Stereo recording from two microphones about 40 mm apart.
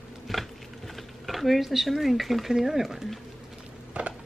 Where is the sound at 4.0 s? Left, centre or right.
Right.